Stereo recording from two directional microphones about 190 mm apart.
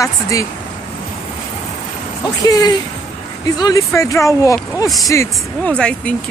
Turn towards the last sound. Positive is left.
turn(degrees=5)  # may be behind; listen again after turning